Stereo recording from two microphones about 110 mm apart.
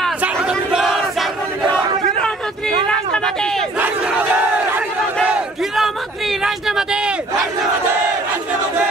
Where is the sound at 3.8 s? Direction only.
15° right (ahead or behind).